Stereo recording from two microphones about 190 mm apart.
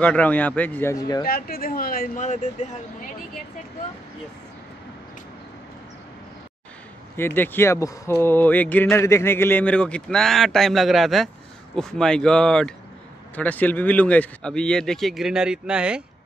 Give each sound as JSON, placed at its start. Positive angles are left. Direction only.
{"t": 0.0, "sound": "a man's voice", "side_deg": 5}
{"t": 1.2, "sound": "speech", "side_deg": 50}
{"t": 7.2, "sound": "a man's voice", "side_deg": 10}